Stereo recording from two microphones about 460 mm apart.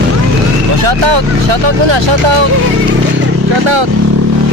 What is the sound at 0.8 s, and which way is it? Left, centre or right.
Speech, right.